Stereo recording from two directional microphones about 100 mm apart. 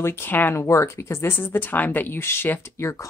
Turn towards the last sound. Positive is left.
turn(degrees=30)  # may be behind; listen again after turning